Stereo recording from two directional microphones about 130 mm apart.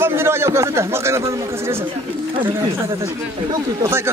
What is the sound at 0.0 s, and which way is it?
A man's voice, 20° right (ahead or behind).